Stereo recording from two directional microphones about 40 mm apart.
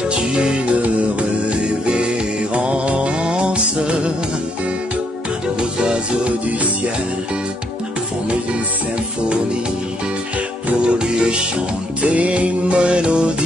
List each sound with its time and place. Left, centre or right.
0.1 s music: right
1.9 s music: right
5.6 s music: right
10.8 s music: right